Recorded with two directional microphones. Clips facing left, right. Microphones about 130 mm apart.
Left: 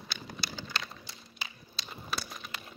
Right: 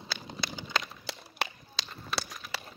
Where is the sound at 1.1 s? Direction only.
90° right.